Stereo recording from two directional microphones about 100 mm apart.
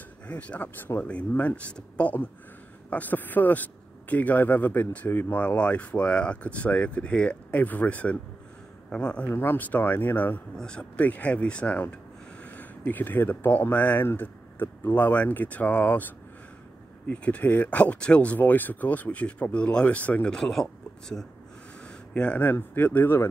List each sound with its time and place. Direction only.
0.3 s a man's voice: 15° left (ahead or behind)
9.3 s a man's voice: 20° left (ahead or behind)
17.1 s a man's voice: 15° left (ahead or behind)
21.8 s speech: 10° left (ahead or behind)